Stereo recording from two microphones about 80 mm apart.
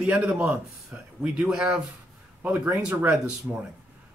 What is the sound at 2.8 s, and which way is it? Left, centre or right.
Speech, centre.